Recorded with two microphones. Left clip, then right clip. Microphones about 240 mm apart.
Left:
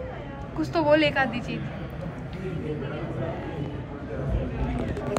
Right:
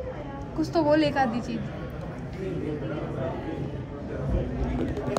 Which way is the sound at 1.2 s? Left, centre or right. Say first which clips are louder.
Right 1 dB; right.